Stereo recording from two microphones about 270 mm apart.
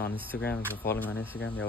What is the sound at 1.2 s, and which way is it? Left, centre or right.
Speech, left.